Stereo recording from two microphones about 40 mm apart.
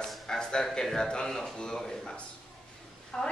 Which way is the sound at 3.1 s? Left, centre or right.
Centre.